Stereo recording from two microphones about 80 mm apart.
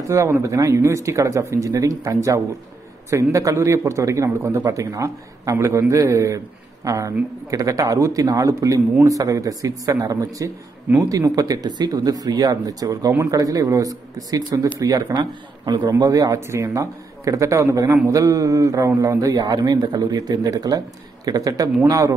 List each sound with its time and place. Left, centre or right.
0.1 s speech: right
4.4 s speech: right
4.6 s speech: right
15.9 s speech: right